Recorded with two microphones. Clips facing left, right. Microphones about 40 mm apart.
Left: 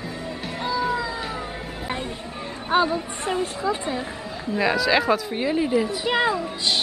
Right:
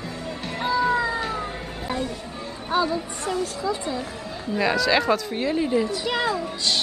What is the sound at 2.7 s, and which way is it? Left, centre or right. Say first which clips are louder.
Speech: left 2 dB; left.